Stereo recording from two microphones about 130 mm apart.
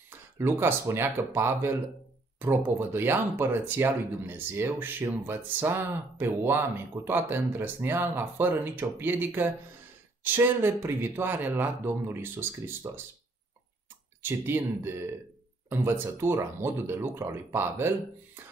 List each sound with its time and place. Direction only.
0.1 s speech: 20° right (ahead or behind)
14.2 s speech: 20° right (ahead or behind)